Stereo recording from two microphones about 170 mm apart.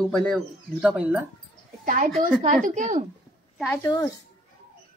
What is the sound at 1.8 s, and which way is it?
A woman's voice, 55° right (ahead or behind).